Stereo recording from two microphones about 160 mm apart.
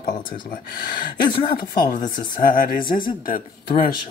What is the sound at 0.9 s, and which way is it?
Speech, 30° left (ahead or behind).